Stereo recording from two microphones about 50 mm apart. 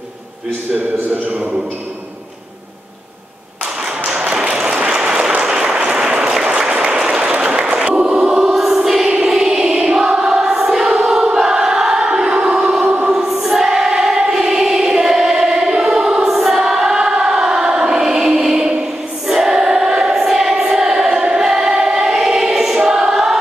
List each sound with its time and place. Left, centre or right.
4.2 s applause: centre
6.7 s applause: right
7.0 s choir: centre